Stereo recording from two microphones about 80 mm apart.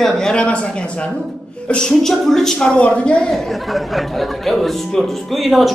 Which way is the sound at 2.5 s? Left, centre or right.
Centre.